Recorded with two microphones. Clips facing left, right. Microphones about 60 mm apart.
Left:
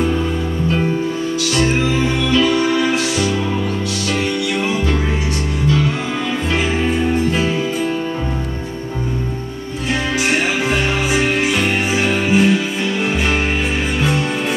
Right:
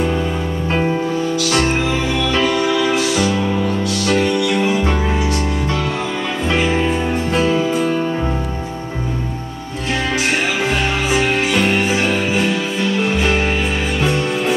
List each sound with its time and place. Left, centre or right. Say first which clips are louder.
0.7 s music: right 1 dB; right
2.3 s music: left 3 dB; right
11.7 s music: right 1 dB; centre